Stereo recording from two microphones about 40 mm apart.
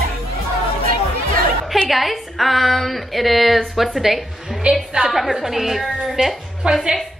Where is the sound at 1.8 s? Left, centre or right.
Centre.